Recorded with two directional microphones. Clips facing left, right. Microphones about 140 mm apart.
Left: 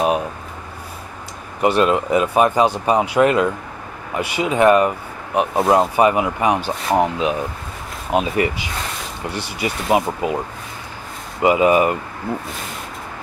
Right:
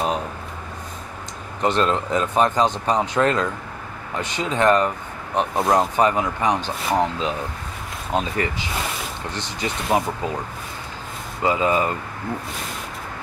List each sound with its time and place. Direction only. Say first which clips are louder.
1.6 s speech: left 4 dB; 10° left (ahead or behind)
11.4 s speech: left 6 dB; 15° left (ahead or behind)